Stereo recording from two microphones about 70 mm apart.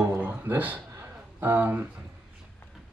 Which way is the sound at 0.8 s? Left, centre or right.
Right.